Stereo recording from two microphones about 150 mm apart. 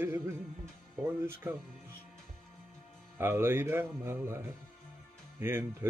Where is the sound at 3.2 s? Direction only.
15° right (ahead or behind).